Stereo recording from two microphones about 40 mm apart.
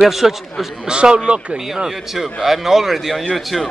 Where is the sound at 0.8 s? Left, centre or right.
Right.